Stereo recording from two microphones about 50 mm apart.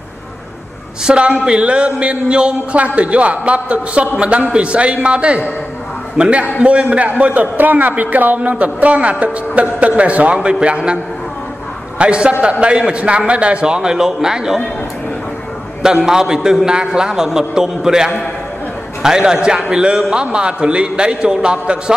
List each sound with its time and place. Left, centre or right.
1.0 s a man's voice: right
12.0 s a man's voice: right
15.8 s a man's voice: centre